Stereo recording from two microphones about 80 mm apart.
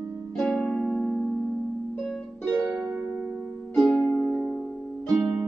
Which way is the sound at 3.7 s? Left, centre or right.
Centre.